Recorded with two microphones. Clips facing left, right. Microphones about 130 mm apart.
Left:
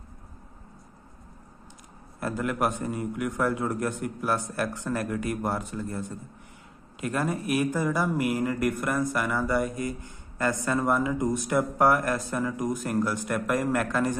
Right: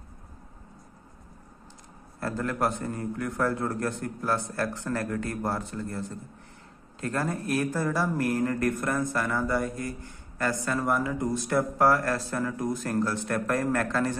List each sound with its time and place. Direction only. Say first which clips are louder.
2.1 s speech: left 1 dB; 15° left (ahead or behind)